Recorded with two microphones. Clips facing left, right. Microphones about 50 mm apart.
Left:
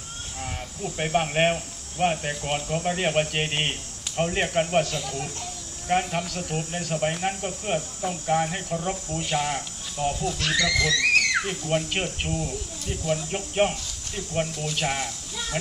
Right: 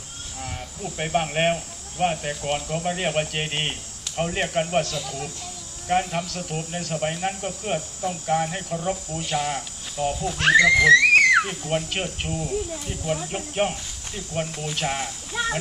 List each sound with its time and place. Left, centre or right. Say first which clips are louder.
0.4 s speech: even; centre
9.6 s cricket: right 2 dB; centre
10.4 s speech: right 10 dB; right
11.7 s speech: left 1 dB; centre
12.3 s speech: right 3 dB; centre
13.6 s speech: left 2 dB; centre